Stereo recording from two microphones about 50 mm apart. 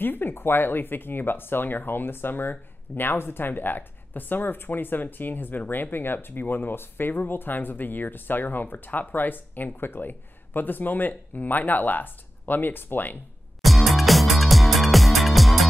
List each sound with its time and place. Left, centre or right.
0.0 s speech: left
13.6 s music: centre